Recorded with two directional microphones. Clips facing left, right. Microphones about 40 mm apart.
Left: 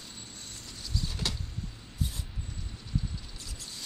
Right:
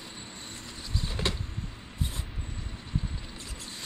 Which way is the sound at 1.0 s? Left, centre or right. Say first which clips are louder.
Right 4 dB; right.